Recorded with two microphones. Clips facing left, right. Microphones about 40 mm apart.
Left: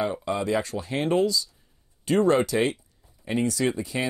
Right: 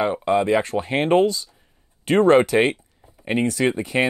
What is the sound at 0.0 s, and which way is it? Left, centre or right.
Speech, right.